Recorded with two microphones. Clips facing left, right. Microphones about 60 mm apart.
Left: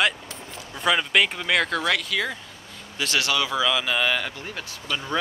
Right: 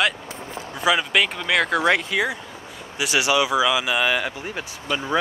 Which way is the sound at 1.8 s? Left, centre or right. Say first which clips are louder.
Right 5 dB; right.